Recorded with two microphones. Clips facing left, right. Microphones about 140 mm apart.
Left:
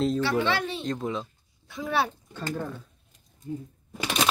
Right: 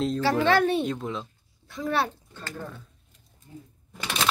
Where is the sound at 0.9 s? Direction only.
Centre (ahead or behind).